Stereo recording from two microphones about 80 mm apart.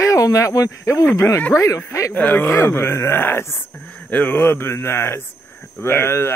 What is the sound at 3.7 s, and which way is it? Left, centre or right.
Speech, left.